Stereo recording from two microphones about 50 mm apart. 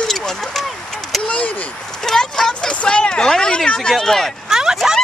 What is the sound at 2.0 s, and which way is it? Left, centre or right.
Speech, centre.